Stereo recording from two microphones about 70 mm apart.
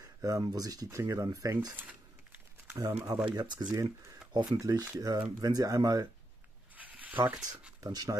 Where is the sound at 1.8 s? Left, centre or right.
Right.